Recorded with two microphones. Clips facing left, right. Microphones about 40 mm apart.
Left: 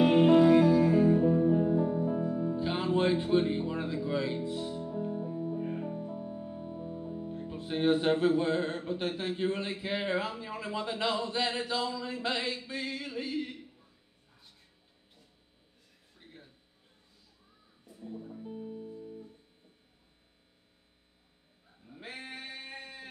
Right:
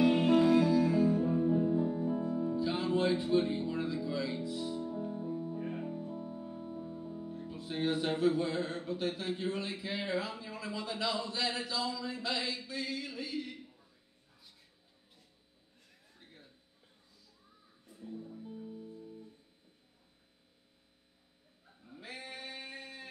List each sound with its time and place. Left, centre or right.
0.0 s music: left
1.2 s music: left
2.5 s music: left
9.4 s speech: left
18.0 s music: left
22.0 s male singing: left
22.6 s a sound: left